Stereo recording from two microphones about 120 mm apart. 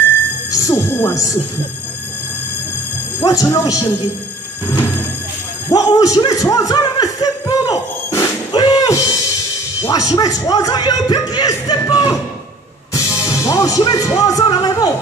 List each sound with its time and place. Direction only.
0.5 s speech: 30° left (ahead or behind)
3.3 s a man's voice: 30° left (ahead or behind)
5.7 s a sound: 30° left (ahead or behind)
9.8 s speech: 30° left (ahead or behind)
12.9 s music: 25° left (ahead or behind)